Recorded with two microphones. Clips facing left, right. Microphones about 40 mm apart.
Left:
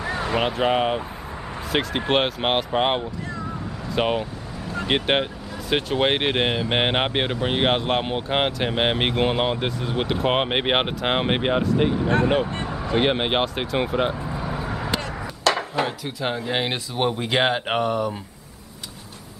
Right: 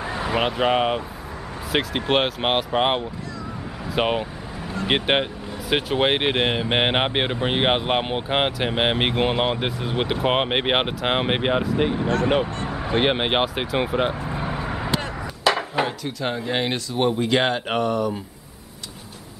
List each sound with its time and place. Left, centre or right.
0.1 s speech: centre
14.2 s vehicle: right
14.6 s a sound: centre
16.0 s speech: centre